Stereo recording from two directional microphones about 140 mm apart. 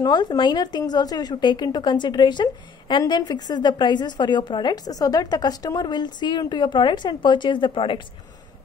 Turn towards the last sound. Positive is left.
turn(degrees=40)  # may be behind; listen again after turning